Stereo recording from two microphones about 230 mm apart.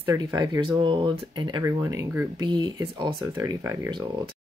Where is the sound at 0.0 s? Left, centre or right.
Centre.